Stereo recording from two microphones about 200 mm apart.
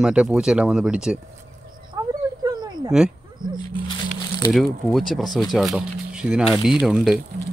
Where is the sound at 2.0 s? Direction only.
15° right (ahead or behind).